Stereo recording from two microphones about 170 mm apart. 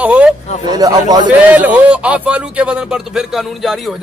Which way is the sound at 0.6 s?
25° right (ahead or behind).